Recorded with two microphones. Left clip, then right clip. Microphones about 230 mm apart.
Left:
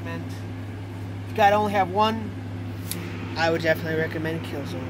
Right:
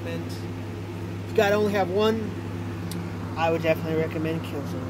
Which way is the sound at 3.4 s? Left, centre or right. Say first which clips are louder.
Left 1 dB; left.